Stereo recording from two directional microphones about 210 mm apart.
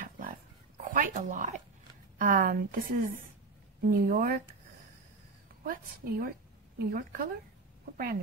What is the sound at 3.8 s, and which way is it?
Speech, 40° right (ahead or behind).